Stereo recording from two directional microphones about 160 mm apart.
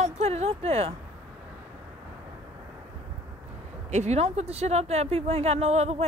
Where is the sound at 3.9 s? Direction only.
45° right (ahead or behind).